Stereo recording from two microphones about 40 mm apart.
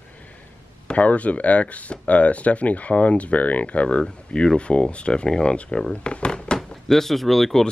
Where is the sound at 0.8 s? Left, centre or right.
Left; by 5.6 s centre.